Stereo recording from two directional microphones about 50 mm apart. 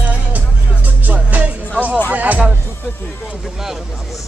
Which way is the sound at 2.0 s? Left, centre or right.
Right.